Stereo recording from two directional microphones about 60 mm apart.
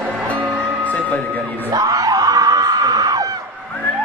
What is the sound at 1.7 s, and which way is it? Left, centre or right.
Screaming, right.